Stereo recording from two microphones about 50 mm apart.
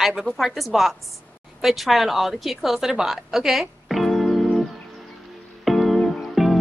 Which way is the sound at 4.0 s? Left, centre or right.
Centre.